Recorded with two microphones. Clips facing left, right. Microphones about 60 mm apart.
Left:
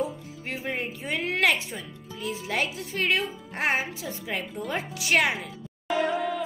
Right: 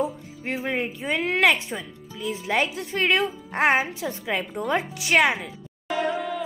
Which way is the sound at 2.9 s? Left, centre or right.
Right.